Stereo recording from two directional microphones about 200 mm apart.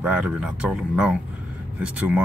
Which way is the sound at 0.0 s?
5° right (ahead or behind).